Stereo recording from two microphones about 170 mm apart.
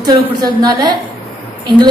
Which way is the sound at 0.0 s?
20° right (ahead or behind).